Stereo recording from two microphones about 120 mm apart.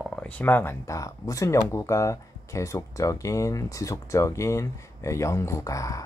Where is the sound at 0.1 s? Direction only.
15° left (ahead or behind).